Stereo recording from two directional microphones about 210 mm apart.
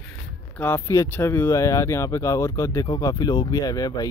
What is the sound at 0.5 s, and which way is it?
Speech, 10° left (ahead or behind).